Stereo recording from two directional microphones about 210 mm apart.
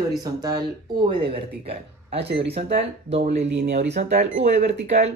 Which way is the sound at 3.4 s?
55° right (ahead or behind).